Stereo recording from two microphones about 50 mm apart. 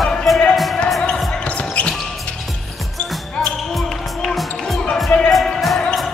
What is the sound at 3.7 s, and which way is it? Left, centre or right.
Basketball bounce, centre.